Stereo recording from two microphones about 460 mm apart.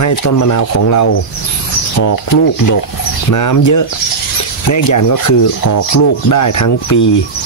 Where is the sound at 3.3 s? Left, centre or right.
Left.